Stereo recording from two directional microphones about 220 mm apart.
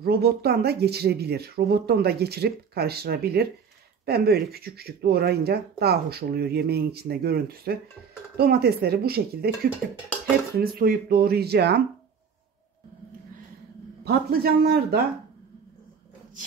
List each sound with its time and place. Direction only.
0.0 s speech: 45° right (ahead or behind)
10.6 s speech: 45° right (ahead or behind)
14.0 s speech: 45° right (ahead or behind)